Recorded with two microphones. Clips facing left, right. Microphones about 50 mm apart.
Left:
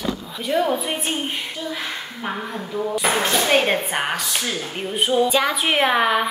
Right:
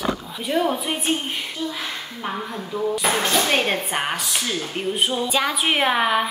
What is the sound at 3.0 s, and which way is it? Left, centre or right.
Speech, centre.